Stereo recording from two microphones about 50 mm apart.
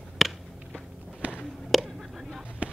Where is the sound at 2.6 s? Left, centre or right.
Right.